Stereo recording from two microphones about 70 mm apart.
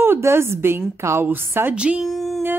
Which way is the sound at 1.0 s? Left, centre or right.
Right.